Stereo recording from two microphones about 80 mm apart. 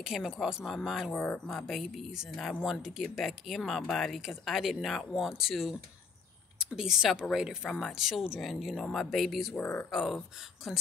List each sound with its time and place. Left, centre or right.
0.0 s speech: centre
1.1 s speech: left
1.5 s speech: centre
9.6 s speech: left
9.8 s speech: centre